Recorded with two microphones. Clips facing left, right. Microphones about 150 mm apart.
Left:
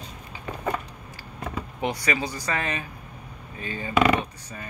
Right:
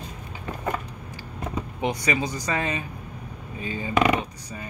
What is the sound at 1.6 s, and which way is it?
Speech, 20° right (ahead or behind).